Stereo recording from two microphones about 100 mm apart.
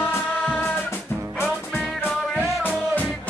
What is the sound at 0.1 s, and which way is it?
Music, 20° left (ahead or behind).